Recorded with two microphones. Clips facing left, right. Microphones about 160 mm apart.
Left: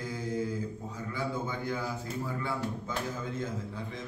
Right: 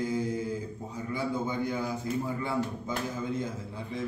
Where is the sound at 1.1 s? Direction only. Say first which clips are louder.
Right 4 dB; 15° right (ahead or behind).